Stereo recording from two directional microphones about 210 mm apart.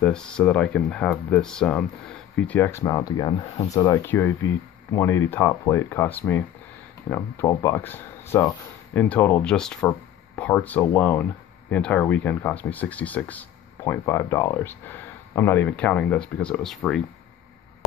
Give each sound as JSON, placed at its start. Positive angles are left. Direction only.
{"t": 0.0, "sound": "speech", "side_deg": 5}